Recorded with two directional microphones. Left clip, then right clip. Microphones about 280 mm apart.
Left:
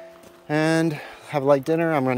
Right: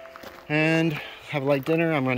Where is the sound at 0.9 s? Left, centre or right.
Centre.